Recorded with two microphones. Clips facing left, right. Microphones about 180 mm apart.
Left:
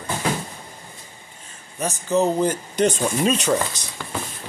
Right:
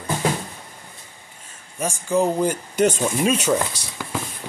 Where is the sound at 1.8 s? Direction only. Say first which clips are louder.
Even; 10° right (ahead or behind).